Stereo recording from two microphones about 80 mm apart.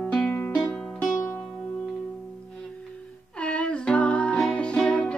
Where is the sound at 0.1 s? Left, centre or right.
Centre.